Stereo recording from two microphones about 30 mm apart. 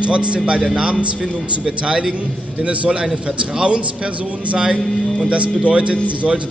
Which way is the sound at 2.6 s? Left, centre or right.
Right.